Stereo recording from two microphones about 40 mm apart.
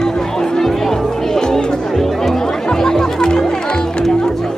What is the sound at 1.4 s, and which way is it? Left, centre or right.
Speech, centre.